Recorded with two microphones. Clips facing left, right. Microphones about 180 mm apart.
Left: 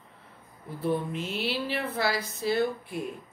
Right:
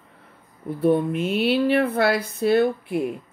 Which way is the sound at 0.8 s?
60° right (ahead or behind).